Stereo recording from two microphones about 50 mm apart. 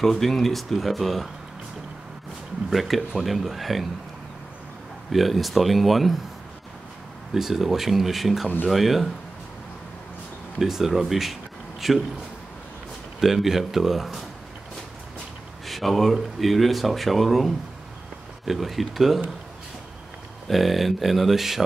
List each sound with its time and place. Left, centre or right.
0.0 s speech: centre
2.7 s speech: centre
5.1 s speech: centre
7.3 s speech: centre
10.6 s speech: centre
13.2 s speech: centre
15.6 s speech: centre
20.4 s speech: centre